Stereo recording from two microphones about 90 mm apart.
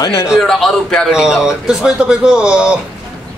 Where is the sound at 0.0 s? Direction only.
35° left (ahead or behind).